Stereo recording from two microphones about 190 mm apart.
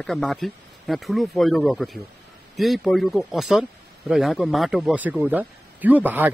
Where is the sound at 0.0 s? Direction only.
Centre (ahead or behind).